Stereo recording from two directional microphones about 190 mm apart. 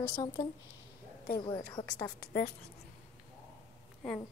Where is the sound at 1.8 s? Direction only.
35° left (ahead or behind).